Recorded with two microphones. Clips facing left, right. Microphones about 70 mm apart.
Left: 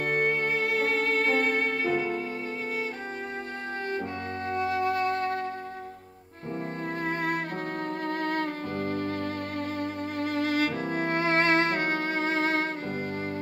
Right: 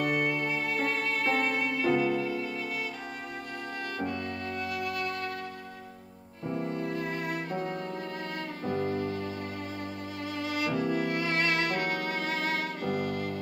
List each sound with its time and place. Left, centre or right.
0.0 s music: left
3.9 s music: left
6.8 s music: left